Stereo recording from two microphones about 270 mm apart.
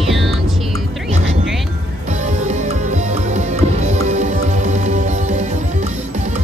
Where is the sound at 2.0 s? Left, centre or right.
Right.